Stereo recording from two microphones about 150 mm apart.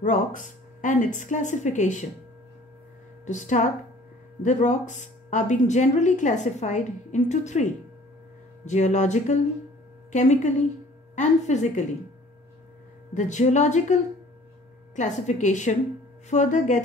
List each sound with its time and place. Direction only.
0.0 s speech: 55° left (ahead or behind)
3.3 s speech: 55° left (ahead or behind)
13.1 s speech: 55° left (ahead or behind)
15.0 s speech: 50° left (ahead or behind)